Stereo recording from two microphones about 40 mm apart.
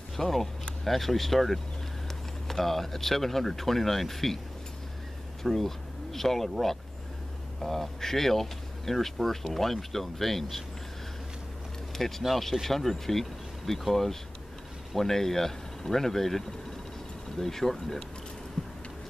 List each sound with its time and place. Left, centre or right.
0.2 s speech: centre
5.4 s speech: centre
12.2 s speech: centre